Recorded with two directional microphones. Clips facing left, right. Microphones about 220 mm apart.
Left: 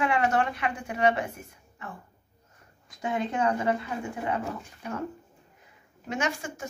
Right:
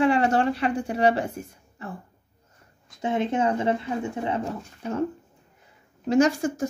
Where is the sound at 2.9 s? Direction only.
25° right (ahead or behind).